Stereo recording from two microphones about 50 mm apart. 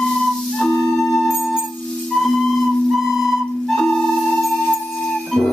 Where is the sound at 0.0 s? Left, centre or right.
Centre.